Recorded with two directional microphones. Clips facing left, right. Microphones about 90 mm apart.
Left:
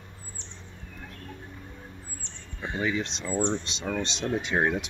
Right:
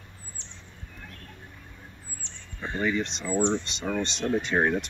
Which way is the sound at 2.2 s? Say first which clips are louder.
Left 1 dB; 45° left (ahead or behind).